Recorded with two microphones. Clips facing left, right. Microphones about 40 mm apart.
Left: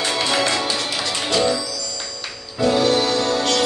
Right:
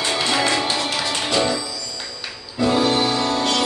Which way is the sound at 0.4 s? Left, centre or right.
Centre.